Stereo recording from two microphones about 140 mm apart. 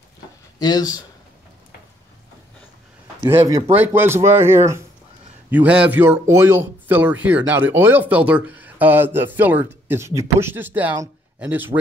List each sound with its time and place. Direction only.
0.6 s speech: 30° left (ahead or behind)
3.3 s speech: 25° right (ahead or behind)